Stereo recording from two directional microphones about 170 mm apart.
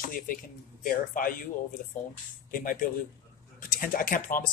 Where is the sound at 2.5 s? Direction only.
55° left (ahead or behind).